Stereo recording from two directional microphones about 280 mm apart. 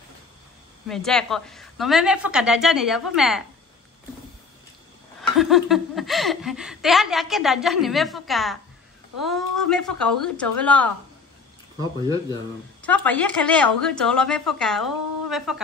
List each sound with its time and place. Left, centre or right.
0.8 s a woman's voice: centre
5.4 s a woman's voice: centre
11.8 s speech: centre
12.8 s a woman's voice: centre